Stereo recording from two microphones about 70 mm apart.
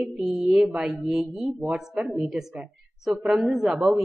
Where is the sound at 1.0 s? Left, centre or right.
Centre.